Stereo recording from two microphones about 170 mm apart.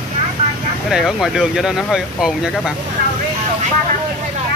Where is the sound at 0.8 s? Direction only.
Centre (ahead or behind).